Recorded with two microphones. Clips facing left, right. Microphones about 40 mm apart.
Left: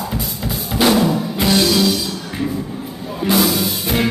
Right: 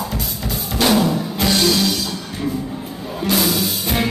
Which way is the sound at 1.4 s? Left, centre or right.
Centre.